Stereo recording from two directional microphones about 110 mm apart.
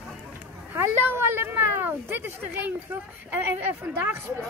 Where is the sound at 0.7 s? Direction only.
20° right (ahead or behind).